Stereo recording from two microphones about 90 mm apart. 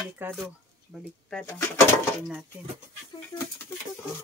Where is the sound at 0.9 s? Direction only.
Centre (ahead or behind).